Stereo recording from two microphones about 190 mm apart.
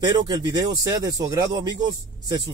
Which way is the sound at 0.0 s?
25° right (ahead or behind).